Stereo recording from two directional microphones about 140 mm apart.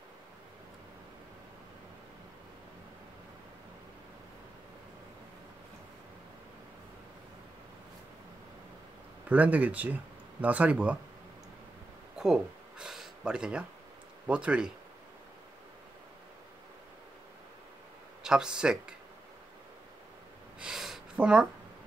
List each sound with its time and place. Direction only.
9.3 s speech: 10° right (ahead or behind)
12.2 s speech: 5° right (ahead or behind)
18.2 s speech: 5° right (ahead or behind)
20.5 s a sound: 5° right (ahead or behind)